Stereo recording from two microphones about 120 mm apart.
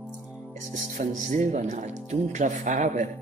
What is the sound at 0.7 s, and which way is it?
Speech, 90° right.